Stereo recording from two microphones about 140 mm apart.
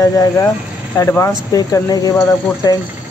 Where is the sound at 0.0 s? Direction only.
25° left (ahead or behind).